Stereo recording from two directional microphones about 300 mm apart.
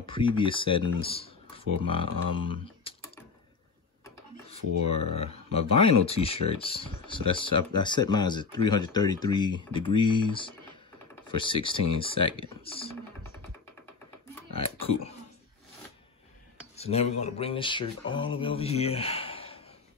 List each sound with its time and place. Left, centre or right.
0.0 s speech: centre
16.7 s speech: left